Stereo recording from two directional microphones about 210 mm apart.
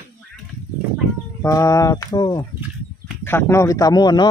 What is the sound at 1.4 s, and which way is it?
Speech, 15° left (ahead or behind).